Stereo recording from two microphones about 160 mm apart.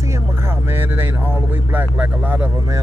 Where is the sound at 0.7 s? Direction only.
15° right (ahead or behind).